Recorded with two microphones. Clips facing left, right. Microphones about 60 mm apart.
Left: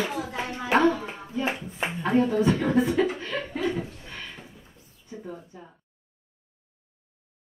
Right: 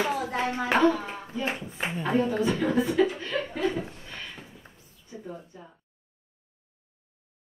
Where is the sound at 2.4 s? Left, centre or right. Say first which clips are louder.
Left 2 dB; centre.